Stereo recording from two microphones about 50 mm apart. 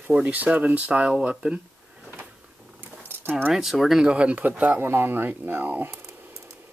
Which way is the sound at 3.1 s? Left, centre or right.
Right.